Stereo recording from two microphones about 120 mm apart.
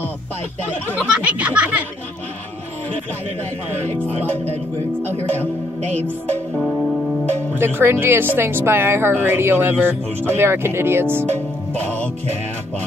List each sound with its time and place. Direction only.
1.2 s speech: 10° right (ahead or behind)
7.5 s speech: 20° right (ahead or behind)